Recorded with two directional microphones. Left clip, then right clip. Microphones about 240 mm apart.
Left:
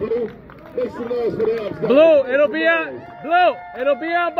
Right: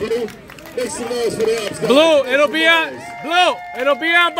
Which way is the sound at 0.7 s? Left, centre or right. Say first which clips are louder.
Right 1 dB; right.